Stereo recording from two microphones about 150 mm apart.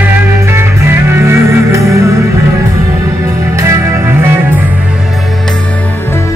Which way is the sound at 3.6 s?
20° right (ahead or behind).